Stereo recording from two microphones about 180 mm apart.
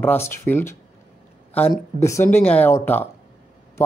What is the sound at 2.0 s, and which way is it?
Speech, 15° left (ahead or behind).